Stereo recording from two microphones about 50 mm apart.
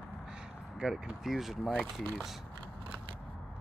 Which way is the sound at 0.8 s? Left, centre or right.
Centre.